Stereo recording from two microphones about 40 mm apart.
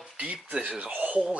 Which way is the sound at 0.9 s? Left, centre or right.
Right.